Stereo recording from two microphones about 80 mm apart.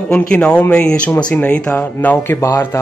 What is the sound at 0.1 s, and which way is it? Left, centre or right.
Speech, centre.